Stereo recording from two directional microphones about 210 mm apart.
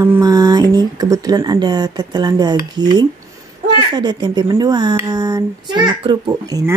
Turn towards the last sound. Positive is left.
turn(degrees=-15)  # may be behind; listen again after turning